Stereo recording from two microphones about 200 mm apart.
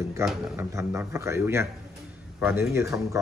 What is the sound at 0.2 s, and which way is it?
Speech, centre (ahead or behind).